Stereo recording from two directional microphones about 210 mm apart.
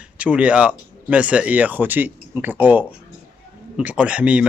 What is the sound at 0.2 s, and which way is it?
Speech, 5° right (ahead or behind).